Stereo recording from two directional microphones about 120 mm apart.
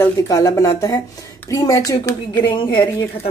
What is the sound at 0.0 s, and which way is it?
Speech, 30° left (ahead or behind).